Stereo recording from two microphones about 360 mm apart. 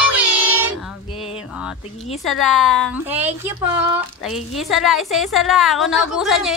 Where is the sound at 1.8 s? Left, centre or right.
Centre.